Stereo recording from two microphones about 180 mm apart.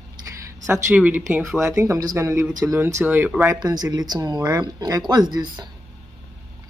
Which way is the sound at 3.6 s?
20° right (ahead or behind).